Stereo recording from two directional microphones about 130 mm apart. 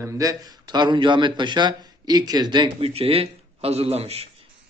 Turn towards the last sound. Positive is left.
turn(degrees=-50)  # may be behind; listen again after turning